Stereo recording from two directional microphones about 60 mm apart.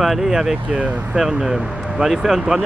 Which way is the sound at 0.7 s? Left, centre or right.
Right.